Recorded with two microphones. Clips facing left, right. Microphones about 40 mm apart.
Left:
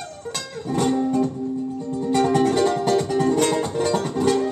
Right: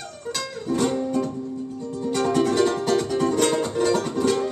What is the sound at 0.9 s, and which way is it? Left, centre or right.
Music, centre.